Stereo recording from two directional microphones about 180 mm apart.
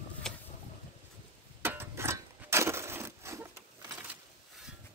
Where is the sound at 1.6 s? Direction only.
15° right (ahead or behind).